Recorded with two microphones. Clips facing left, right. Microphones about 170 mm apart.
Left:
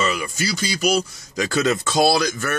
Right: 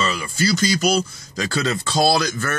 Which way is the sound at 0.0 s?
30° right (ahead or behind).